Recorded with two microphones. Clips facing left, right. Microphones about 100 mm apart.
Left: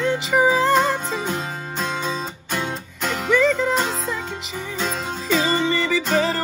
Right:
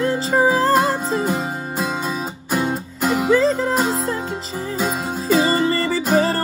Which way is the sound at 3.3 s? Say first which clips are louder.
Even; 30° right (ahead or behind).